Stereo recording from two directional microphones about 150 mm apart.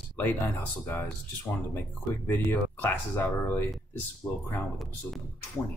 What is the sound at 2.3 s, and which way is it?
Speech, 15° left (ahead or behind).